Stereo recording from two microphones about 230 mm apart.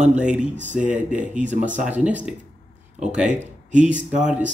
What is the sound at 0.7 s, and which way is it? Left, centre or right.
Speech, centre.